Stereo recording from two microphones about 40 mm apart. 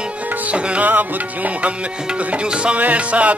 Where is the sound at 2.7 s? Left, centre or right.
Right.